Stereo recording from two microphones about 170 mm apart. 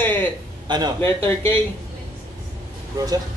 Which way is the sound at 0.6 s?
25° right (ahead or behind).